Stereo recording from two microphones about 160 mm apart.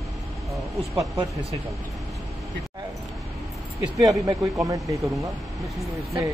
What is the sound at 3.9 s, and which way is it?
Speech, 20° right (ahead or behind).